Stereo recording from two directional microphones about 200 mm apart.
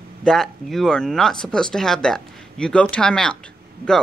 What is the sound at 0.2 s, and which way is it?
Speech, centre (ahead or behind).